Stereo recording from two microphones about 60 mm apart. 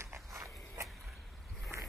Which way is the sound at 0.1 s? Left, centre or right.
Right.